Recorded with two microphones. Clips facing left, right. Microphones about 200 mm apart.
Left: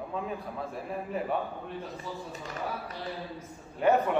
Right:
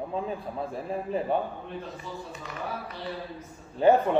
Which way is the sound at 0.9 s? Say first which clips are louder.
Right 4 dB; 30° right (ahead or behind).